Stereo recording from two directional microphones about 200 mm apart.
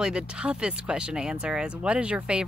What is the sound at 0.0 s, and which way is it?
Speech, 5° right (ahead or behind).